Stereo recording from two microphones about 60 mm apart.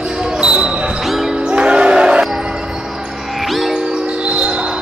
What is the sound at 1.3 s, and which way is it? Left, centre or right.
Music, centre.